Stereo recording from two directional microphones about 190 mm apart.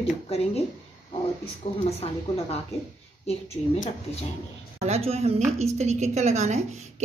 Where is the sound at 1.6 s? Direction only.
30° left (ahead or behind).